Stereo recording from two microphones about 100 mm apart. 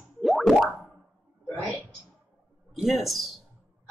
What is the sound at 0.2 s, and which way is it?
Plop, centre (ahead or behind).